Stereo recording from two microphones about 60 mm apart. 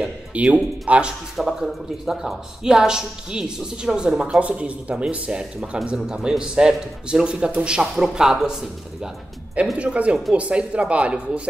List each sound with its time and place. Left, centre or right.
0.3 s speech: right
1.3 s speech: centre
9.8 s speech: right